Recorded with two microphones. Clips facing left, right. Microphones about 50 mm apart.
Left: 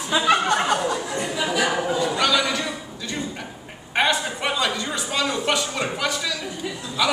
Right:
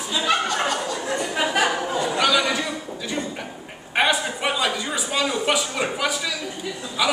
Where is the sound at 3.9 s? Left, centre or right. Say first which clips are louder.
Right 1 dB; centre.